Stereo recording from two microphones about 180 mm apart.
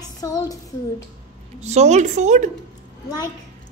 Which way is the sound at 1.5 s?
40° right (ahead or behind).